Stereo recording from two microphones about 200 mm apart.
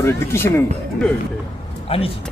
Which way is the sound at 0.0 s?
15° left (ahead or behind).